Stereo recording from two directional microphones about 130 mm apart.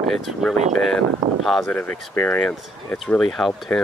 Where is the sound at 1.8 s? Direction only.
15° left (ahead or behind).